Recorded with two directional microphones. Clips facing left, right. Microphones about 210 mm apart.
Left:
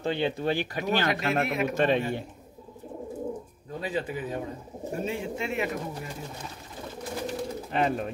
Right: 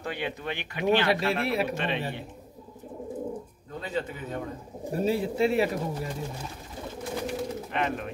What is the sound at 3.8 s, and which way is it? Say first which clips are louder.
Speech: left 1 dB; 15° left (ahead or behind).